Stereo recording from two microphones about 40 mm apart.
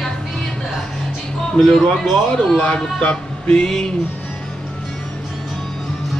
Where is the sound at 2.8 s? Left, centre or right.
Left.